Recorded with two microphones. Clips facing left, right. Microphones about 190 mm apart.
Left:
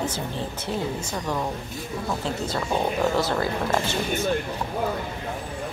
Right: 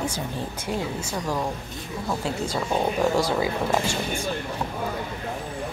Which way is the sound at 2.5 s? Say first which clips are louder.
Even; 5° right (ahead or behind).